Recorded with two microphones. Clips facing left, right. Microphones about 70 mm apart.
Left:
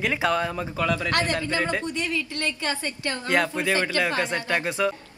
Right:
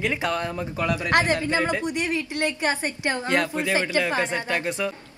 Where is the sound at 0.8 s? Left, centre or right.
Centre.